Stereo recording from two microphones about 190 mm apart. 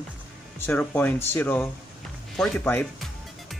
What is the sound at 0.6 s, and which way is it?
Speech, 10° left (ahead or behind).